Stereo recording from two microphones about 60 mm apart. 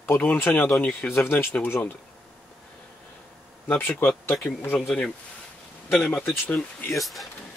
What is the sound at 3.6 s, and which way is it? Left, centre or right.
Speech, left.